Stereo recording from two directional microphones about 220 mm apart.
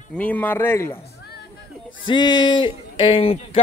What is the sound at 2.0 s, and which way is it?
Speech, 20° left (ahead or behind).